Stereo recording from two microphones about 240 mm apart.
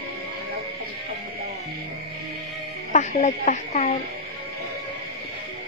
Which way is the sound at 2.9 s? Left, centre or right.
Left.